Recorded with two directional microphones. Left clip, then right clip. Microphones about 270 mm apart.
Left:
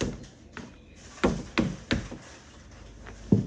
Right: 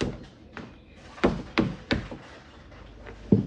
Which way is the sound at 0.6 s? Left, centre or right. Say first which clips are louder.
Right 1 dB; centre.